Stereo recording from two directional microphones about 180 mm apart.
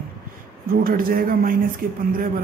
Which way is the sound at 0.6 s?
55° right (ahead or behind).